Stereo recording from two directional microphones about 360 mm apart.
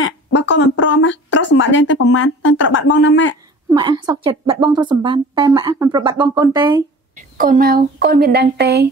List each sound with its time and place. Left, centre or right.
0.0 s speech: left
3.7 s speech: centre